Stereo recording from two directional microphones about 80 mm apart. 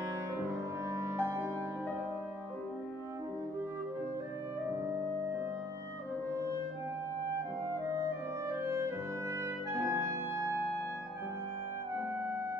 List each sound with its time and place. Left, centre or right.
0.5 s music: right
6.3 s music: right
7.9 s clarinet: right